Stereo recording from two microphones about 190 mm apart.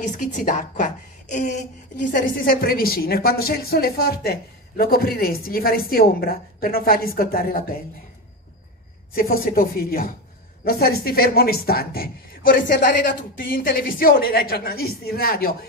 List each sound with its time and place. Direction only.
0.0 s a woman's voice: 40° left (ahead or behind)
9.1 s a woman's voice: 50° left (ahead or behind)